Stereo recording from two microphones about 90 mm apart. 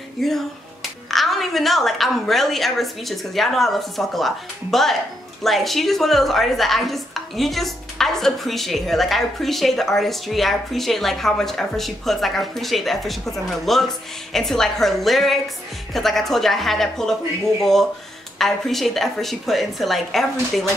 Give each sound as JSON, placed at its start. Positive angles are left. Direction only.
{"t": 0.2, "sound": "speech", "side_deg": 5}